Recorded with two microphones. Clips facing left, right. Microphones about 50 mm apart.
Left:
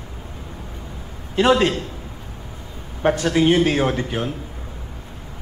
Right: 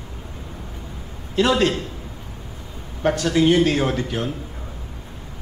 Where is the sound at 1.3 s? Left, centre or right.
Left.